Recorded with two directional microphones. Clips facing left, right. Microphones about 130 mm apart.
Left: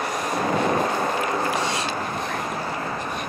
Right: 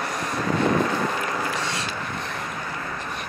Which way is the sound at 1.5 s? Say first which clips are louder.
Left 4 dB; 15° left (ahead or behind).